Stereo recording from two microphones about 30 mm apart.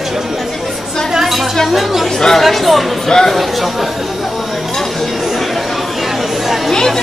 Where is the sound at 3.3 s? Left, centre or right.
Centre.